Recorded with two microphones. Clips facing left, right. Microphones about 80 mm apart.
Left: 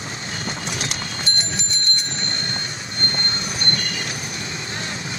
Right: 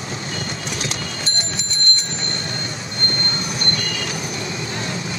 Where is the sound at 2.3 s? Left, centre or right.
Left.